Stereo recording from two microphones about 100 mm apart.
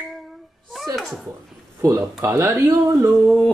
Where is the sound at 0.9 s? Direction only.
Centre (ahead or behind).